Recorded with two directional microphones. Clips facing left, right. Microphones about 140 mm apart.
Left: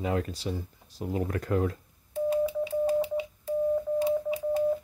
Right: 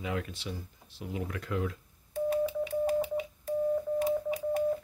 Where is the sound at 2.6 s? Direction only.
25° left (ahead or behind).